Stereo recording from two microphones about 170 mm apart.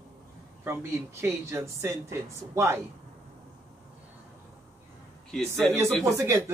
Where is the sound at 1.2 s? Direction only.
15° right (ahead or behind).